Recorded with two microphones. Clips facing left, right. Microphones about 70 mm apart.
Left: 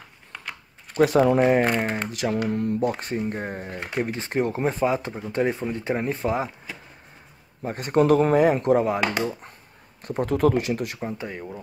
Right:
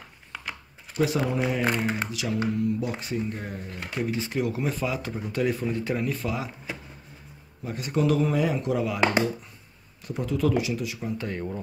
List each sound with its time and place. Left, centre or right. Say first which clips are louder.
0.3 s a sound: even; centre
0.9 s speech: left 7 dB; left
7.6 s speech: left 5 dB; left
10.0 s speech: left 5 dB; left
11.1 s speech: right 1 dB; centre